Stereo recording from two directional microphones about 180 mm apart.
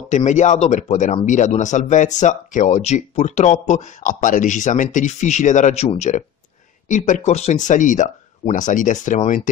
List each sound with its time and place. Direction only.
0.1 s speech: 40° left (ahead or behind)